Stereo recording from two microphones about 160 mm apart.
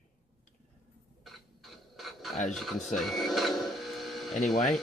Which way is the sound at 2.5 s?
Centre (ahead or behind).